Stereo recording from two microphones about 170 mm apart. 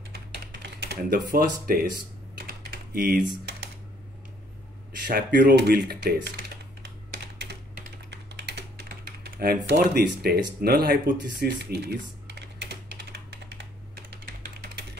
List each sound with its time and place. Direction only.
0.6 s speech: 65° right (ahead or behind)
2.9 s speech: 65° right (ahead or behind)
5.0 s speech: 55° right (ahead or behind)
9.2 s speech: 65° right (ahead or behind); by 12.6 s 85° right